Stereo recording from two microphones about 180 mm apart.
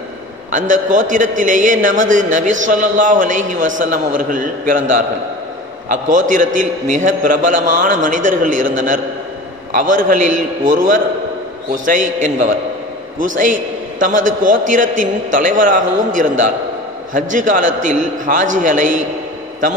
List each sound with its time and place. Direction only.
0.5 s a man's voice: 45° right (ahead or behind)